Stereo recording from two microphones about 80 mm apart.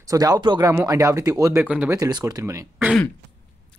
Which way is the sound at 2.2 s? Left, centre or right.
Right.